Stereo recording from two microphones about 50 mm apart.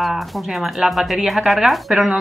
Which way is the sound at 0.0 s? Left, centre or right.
Centre.